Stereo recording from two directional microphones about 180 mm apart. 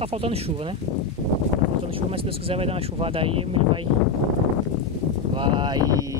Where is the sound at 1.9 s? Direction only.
30° right (ahead or behind).